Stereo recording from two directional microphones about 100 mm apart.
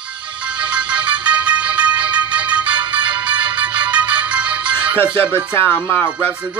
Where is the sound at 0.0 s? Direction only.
10° right (ahead or behind).